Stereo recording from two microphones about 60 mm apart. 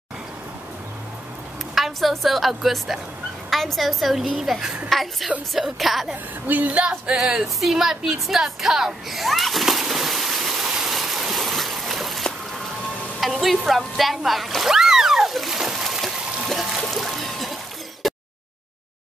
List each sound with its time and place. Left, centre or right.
1.8 s a woman's voice: centre
4.8 s a woman's voice: centre
6.4 s speech: right
6.8 s a woman's voice: centre
7.2 s a sound: centre
13.2 s splash: centre
16.8 s music: centre
18.0 s a sound: centre